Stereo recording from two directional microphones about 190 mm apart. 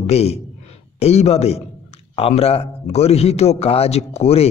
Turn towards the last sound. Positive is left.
turn(degrees=35)  # may be behind; listen again after turning